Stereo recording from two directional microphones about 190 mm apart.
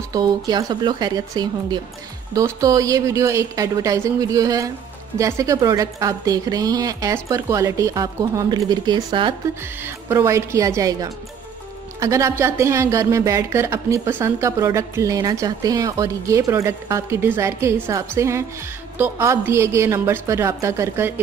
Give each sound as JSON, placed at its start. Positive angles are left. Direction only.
{"t": 0.1, "sound": "a woman's voice", "side_deg": -20}
{"t": 9.8, "sound": "speech", "side_deg": -15}